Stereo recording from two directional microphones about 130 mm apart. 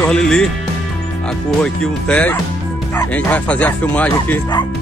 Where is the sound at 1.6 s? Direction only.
10° left (ahead or behind).